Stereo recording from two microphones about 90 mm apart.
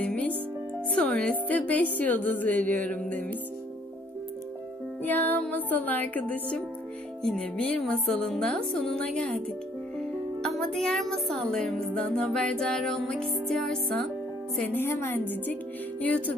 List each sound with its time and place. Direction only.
0.0 s music: 15° left (ahead or behind)
5.0 s music: 20° left (ahead or behind)
7.2 s a woman's voice: 10° left (ahead or behind)
14.7 s music: 25° left (ahead or behind)